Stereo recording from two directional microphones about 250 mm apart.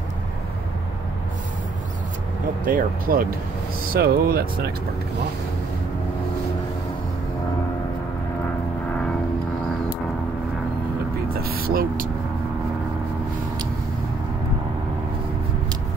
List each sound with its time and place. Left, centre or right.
2.6 s speech: right
11.3 s vehicle: right